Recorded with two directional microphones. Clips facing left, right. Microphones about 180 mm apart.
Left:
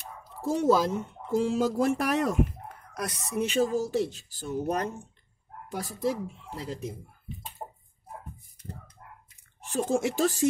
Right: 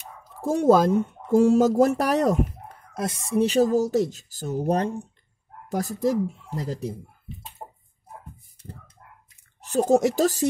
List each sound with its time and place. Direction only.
0.2 s speech: 50° right (ahead or behind)
2.9 s speech: 25° right (ahead or behind)
5.7 s speech: 45° right (ahead or behind)
9.6 s speech: 40° right (ahead or behind)